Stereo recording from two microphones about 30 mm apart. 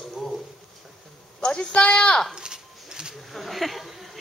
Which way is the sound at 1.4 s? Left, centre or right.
Left.